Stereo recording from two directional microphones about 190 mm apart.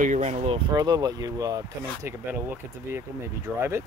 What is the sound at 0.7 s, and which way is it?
Speech, 20° right (ahead or behind).